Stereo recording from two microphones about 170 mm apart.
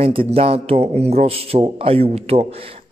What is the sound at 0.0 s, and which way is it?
Speech, 35° right (ahead or behind).